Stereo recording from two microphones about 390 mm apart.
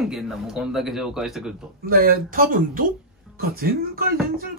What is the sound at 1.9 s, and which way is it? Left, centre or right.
Speech, right.